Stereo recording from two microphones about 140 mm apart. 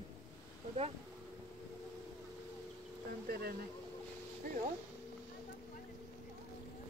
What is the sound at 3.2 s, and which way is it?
Speech, 90° right.